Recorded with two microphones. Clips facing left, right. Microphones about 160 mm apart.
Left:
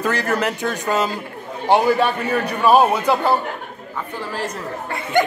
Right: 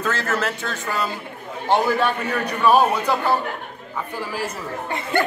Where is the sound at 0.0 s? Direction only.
15° left (ahead or behind).